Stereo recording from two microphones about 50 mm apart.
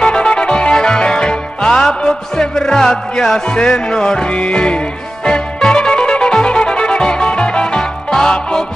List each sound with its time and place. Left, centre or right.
0.0 s music: centre